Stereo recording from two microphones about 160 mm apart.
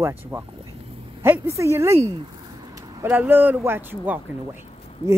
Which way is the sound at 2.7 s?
20° right (ahead or behind).